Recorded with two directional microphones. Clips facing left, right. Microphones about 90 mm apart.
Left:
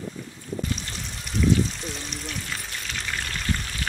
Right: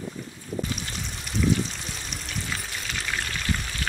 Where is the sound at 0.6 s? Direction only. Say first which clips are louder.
Right 1 dB; centre (ahead or behind).